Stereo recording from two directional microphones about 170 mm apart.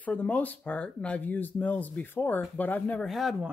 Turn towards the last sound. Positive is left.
turn(degrees=-5)  # may be behind; listen again after turning